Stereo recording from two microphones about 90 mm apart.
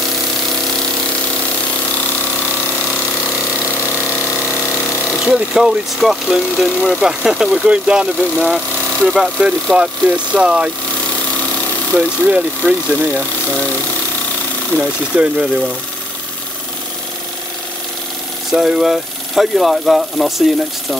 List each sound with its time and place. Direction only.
5.2 s speech: 5° right (ahead or behind)
12.0 s speech: 15° right (ahead or behind)
14.8 s speech: 15° right (ahead or behind)
18.5 s speech: centre (ahead or behind)